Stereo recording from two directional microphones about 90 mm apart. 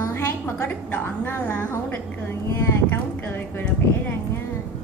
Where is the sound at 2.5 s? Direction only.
30° left (ahead or behind).